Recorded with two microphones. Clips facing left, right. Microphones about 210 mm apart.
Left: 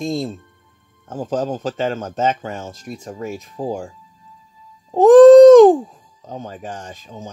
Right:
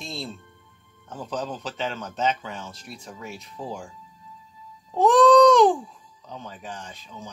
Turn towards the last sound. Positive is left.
turn(degrees=45)  # may be behind; listen again after turning